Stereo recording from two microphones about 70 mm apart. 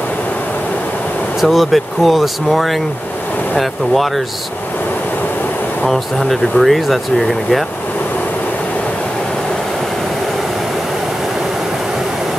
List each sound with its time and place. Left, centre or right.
1.4 s speech: centre
5.9 s speech: centre